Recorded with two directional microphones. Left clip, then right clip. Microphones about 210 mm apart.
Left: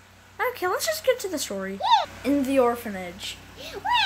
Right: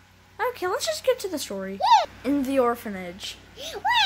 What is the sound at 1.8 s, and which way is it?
Speech, 40° right (ahead or behind).